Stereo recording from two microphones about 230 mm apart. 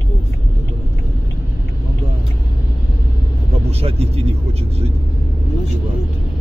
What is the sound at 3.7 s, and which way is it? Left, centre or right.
Vehicle, right.